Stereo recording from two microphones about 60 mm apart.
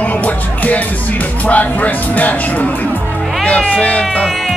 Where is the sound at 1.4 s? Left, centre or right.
Left.